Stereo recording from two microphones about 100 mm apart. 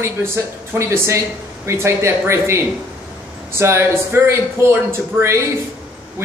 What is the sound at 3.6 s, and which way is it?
Speech, 25° right (ahead or behind).